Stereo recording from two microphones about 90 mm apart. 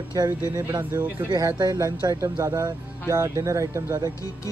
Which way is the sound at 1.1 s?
55° right (ahead or behind).